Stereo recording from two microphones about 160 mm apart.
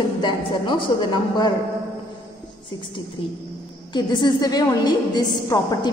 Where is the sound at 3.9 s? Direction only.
30° left (ahead or behind).